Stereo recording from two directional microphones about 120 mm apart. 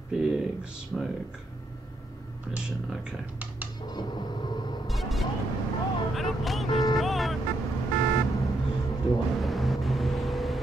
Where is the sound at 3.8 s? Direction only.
40° left (ahead or behind).